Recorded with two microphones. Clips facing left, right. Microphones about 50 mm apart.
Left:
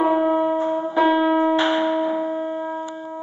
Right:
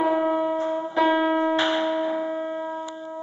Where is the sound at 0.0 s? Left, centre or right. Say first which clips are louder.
Left 4 dB; centre.